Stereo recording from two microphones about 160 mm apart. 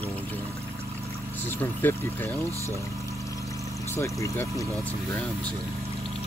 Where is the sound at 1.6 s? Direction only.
15° left (ahead or behind).